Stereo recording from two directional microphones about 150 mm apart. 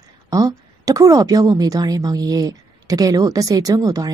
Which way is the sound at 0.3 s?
20° right (ahead or behind).